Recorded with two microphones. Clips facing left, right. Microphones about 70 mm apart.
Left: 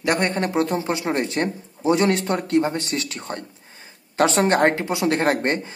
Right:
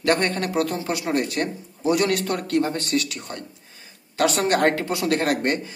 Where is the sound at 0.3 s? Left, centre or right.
Left.